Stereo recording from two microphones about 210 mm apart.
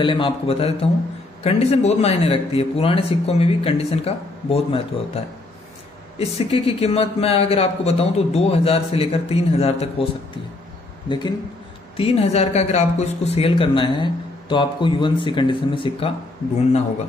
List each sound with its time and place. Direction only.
0.0 s speech: 25° left (ahead or behind)
11.1 s speech: 20° left (ahead or behind)